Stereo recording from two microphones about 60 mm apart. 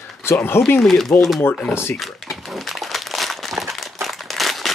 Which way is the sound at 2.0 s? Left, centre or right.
Centre.